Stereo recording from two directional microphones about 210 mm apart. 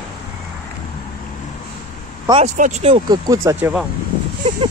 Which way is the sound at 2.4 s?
35° right (ahead or behind).